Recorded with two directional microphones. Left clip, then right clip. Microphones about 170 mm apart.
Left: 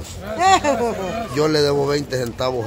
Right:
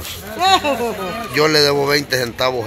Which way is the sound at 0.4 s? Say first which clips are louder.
Even; 30° right (ahead or behind).